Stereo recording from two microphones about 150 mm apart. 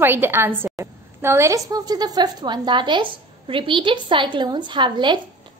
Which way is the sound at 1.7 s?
25° right (ahead or behind).